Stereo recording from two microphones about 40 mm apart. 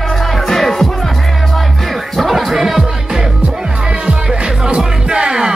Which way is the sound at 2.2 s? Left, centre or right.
Centre.